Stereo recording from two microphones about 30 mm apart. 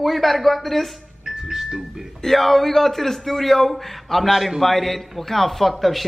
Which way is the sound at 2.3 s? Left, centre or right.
Centre.